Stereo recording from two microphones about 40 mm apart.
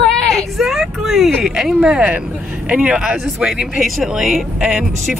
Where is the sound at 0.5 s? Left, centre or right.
Centre.